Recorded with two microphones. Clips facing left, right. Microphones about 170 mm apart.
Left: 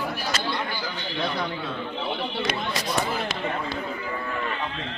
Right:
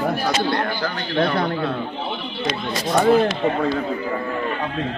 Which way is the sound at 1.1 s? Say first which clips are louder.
Right 9 dB; 65° right (ahead or behind).